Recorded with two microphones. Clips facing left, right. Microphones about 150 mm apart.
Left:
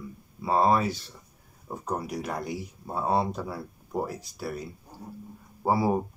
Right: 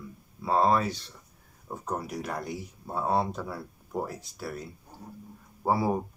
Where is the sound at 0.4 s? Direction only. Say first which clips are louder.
Left 1 dB; 5° left (ahead or behind).